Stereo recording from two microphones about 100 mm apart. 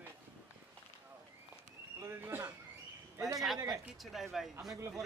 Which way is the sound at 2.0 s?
25° right (ahead or behind).